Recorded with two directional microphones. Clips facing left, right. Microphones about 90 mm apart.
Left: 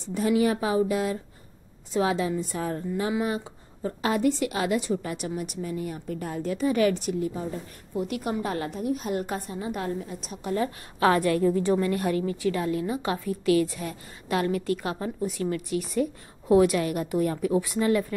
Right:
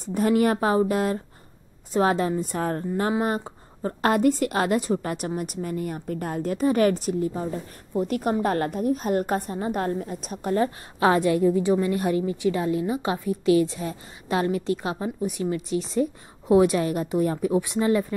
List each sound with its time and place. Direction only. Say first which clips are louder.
0.1 s a woman's voice: right 2 dB; 50° right (ahead or behind)
11.0 s a woman's voice: right 2 dB; 25° right (ahead or behind)